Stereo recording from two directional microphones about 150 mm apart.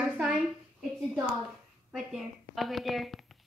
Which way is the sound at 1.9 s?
Centre (ahead or behind).